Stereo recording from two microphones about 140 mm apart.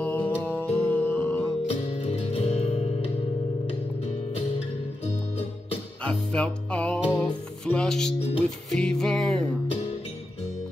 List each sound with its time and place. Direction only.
0.0 s music: 15° left (ahead or behind)
1.7 s music: 50° left (ahead or behind)
6.0 s music: 10° left (ahead or behind)